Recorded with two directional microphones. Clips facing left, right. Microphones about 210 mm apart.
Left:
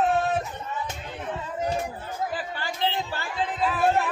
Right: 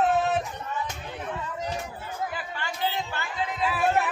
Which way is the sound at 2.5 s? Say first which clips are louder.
Even; 35° left (ahead or behind).